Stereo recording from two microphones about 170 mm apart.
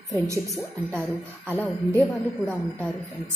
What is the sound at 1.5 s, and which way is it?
Speech, 10° left (ahead or behind).